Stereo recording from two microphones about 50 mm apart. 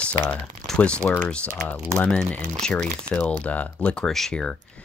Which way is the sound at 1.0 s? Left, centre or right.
Left.